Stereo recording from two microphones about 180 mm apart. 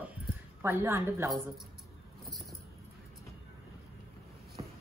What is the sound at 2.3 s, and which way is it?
Vehicle, centre (ahead or behind).